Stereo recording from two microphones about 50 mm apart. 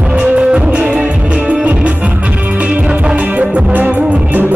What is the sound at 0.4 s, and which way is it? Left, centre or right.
Music, centre.